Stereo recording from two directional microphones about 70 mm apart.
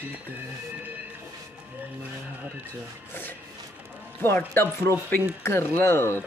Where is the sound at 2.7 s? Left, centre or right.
Left.